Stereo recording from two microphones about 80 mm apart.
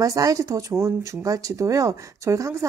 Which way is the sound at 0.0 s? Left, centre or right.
Right.